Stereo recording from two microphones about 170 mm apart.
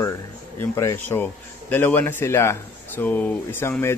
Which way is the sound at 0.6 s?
15° left (ahead or behind).